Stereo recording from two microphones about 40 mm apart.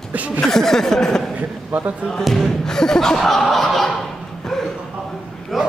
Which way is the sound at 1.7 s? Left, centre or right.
Right.